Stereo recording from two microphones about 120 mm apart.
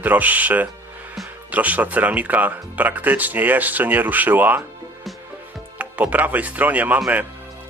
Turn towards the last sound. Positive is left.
turn(degrees=-15)  # may be behind; listen again after turning